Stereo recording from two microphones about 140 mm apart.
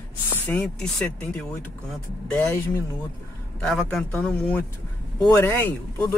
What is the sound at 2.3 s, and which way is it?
Speech, 15° left (ahead or behind).